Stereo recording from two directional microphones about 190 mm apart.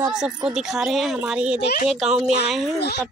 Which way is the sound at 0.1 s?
5° right (ahead or behind).